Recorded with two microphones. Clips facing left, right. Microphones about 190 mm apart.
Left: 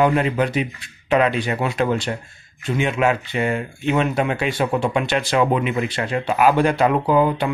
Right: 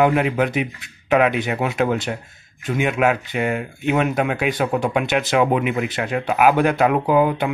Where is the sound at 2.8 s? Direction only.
5° right (ahead or behind).